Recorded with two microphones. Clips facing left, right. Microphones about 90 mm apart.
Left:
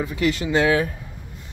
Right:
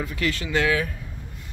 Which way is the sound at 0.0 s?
20° left (ahead or behind).